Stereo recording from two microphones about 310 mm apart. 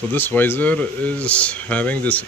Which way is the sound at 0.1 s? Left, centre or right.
Centre.